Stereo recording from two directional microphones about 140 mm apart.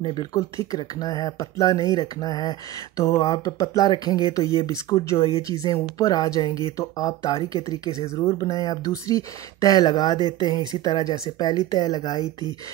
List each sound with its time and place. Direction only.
0.0 s speech: 35° left (ahead or behind)